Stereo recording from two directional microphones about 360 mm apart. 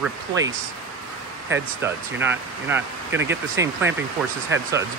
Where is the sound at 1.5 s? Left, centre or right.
Centre.